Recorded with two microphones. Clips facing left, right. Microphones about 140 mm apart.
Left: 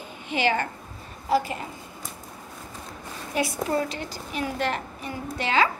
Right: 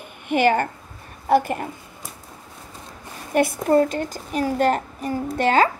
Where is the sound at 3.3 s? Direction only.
55° right (ahead or behind).